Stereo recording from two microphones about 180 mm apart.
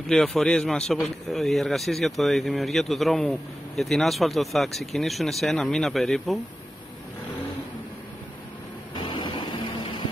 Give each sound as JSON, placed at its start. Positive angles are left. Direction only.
{"t": 0.1, "sound": "speech", "side_deg": 0}
{"t": 8.9, "sound": "vehicle", "side_deg": 25}